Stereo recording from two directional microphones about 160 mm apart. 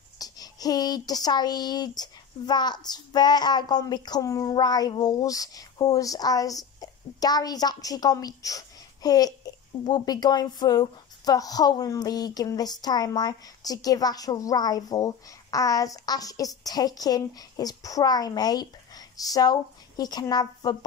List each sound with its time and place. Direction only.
0.2 s speech: 25° left (ahead or behind)